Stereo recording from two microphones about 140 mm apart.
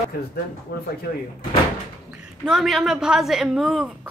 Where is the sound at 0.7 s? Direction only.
90° left.